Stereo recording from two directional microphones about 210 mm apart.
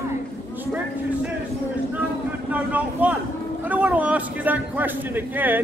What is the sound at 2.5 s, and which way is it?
A man's voice, 5° right (ahead or behind).